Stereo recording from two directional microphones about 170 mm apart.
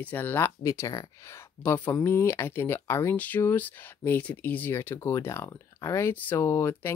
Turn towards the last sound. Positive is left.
turn(degrees=15)  # may be behind; listen again after turning